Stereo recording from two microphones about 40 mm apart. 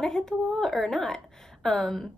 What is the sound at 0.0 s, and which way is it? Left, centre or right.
A woman's voice, centre.